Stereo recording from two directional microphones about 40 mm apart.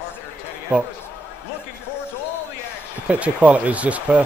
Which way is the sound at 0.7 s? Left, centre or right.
Right.